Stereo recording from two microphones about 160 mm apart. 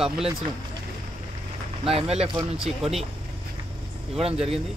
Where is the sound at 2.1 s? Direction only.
40° right (ahead or behind).